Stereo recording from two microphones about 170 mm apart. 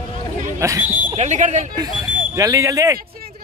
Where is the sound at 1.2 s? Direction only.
45° right (ahead or behind).